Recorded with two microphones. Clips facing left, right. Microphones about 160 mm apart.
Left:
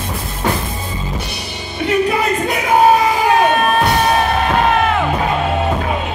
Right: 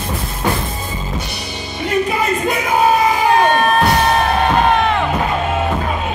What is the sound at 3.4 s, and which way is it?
Crowd, 5° left (ahead or behind).